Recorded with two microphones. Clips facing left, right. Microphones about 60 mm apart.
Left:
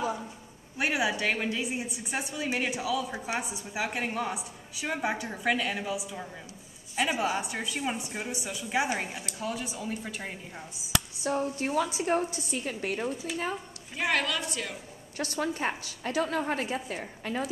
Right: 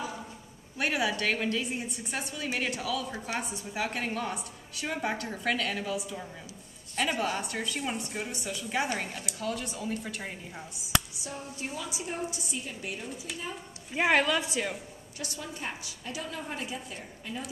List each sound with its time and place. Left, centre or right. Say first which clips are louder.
0.7 s a woman's voice: left 1 dB; centre
11.2 s a woman's voice: left 9 dB; left
13.9 s a woman's voice: right 4 dB; right
15.1 s a woman's voice: left 9 dB; left